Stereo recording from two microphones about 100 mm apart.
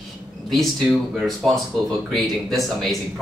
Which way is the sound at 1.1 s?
Centre (ahead or behind).